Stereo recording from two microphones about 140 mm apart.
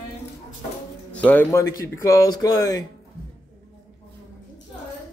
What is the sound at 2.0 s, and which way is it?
Speech, 25° left (ahead or behind).